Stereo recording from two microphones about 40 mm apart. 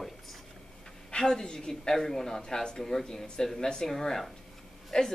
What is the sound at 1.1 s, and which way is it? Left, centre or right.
Speech, centre.